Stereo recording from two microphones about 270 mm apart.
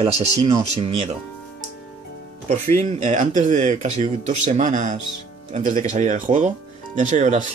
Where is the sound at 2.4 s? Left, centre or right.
Right.